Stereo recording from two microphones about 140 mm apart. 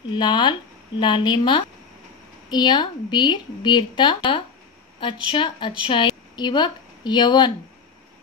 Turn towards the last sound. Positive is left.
turn(degrees=30)  # may be behind; listen again after turning